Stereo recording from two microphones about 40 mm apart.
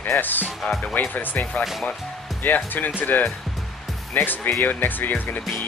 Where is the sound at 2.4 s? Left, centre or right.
Left.